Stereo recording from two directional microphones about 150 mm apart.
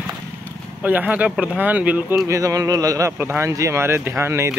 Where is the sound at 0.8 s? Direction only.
10° right (ahead or behind).